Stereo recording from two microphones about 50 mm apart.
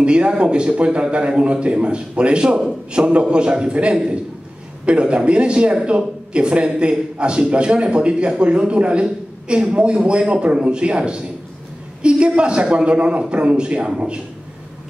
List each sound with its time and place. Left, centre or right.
0.0 s speech: right